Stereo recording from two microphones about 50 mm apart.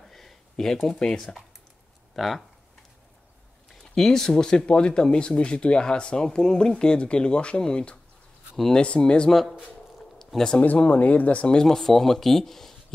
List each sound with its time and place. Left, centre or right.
0.0 s a sound: centre
0.9 s speech: centre
2.1 s speech: centre
3.8 s speech: centre
9.3 s speech: centre
10.1 s a sound: centre
10.6 s speech: left
11.5 s speech: centre